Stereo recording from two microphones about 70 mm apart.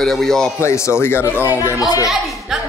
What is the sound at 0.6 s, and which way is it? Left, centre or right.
Speech, left.